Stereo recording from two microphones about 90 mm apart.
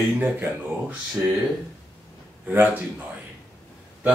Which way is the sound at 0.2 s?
20° right (ahead or behind).